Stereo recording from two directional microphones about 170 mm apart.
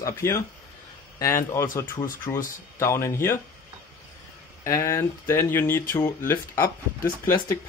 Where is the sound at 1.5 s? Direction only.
15° left (ahead or behind).